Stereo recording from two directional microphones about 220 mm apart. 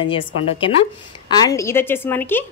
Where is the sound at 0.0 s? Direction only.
25° left (ahead or behind).